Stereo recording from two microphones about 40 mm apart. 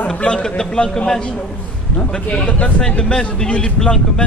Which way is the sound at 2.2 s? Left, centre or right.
Left.